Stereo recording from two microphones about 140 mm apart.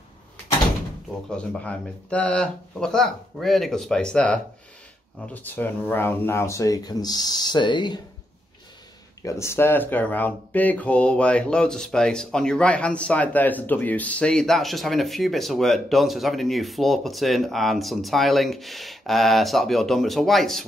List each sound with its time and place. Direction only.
1.3 s speech: 10° left (ahead or behind); by 8.0 s 35° left (ahead or behind)
9.2 s speech: 20° left (ahead or behind); by 20.6 s centre (ahead or behind)